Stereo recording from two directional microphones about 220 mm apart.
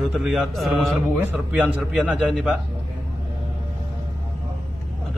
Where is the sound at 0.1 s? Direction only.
Centre (ahead or behind).